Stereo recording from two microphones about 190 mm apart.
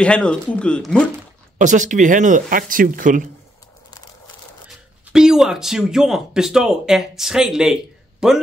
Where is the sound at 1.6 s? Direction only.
40° right (ahead or behind).